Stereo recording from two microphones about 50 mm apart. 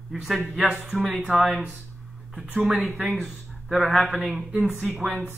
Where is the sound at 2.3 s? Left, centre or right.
Centre.